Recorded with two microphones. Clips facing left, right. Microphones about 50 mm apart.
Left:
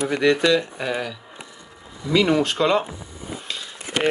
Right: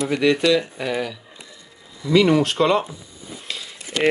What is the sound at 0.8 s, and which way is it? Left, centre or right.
Speech, centre.